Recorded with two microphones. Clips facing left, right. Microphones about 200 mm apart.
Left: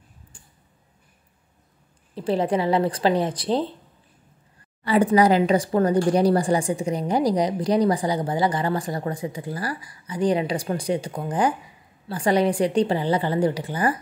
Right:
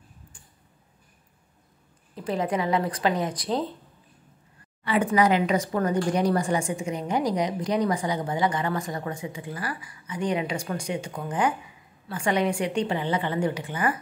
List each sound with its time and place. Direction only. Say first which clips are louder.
0.3 s a sound: left 2 dB; 30° left (ahead or behind)
2.1 s speech: left 4 dB; 30° left (ahead or behind)
4.8 s speech: left 4 dB; 35° left (ahead or behind)